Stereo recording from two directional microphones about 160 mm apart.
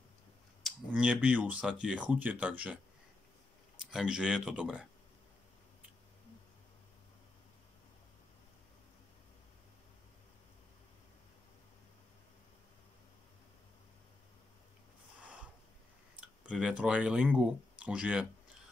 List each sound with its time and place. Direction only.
0.7 s speech: 5° right (ahead or behind)
3.8 s speech: 5° right (ahead or behind)
16.2 s speech: 5° right (ahead or behind)